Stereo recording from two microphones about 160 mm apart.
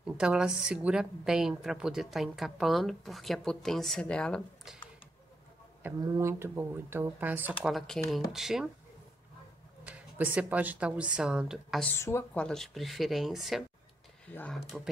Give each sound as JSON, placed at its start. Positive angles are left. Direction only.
{"t": 0.0, "sound": "a woman's voice", "side_deg": -5}
{"t": 5.8, "sound": "a woman's voice", "side_deg": -15}
{"t": 7.6, "sound": "a woman's voice", "side_deg": 0}
{"t": 9.8, "sound": "a woman's voice", "side_deg": -10}
{"t": 11.9, "sound": "speech", "side_deg": 15}
{"t": 12.4, "sound": "a woman's voice", "side_deg": 0}